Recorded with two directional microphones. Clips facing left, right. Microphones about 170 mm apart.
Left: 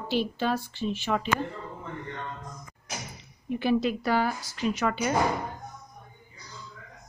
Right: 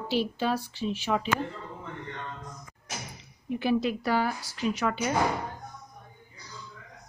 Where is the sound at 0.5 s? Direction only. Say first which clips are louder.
Left 1 dB; 35° right (ahead or behind).